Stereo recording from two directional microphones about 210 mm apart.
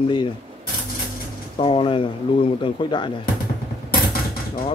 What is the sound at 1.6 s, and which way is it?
Speech, 25° left (ahead or behind).